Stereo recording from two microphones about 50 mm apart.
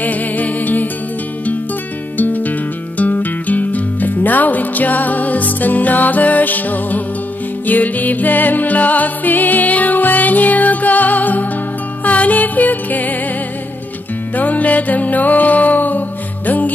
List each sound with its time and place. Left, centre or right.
0.0 s music: left
2.1 s music: left
14.3 s music: left